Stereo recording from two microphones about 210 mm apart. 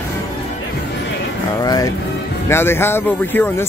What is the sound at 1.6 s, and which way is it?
Speech, 20° left (ahead or behind).